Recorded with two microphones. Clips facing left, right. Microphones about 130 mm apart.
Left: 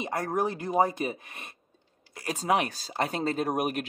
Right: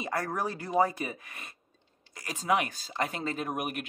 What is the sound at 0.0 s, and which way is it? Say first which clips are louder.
Speech: left 3 dB; 20° left (ahead or behind).